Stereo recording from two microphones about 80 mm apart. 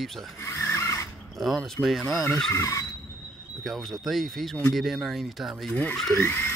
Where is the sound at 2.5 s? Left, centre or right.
Left.